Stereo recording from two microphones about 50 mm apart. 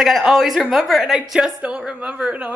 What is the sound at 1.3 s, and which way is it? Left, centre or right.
Speech, centre.